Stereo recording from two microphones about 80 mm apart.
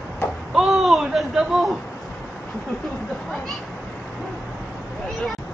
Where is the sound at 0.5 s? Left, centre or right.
Centre.